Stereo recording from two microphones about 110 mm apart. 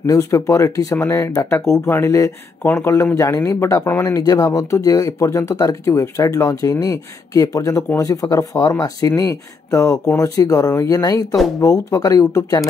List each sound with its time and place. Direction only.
0.0 s speech: 30° left (ahead or behind)